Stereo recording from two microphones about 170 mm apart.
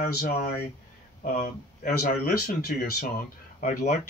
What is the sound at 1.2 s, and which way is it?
Speech, 50° left (ahead or behind).